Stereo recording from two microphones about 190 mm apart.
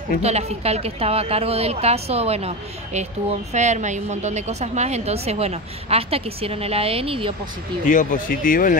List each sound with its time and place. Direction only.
0.2 s a woman's voice: 35° right (ahead or behind)
7.8 s speech: 45° left (ahead or behind)